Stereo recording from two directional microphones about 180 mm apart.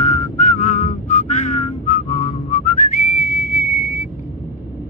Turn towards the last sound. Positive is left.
turn(degrees=50)  # may be behind; listen again after turning